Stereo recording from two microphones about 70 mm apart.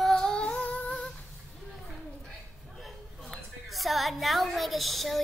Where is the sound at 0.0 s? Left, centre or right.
Centre.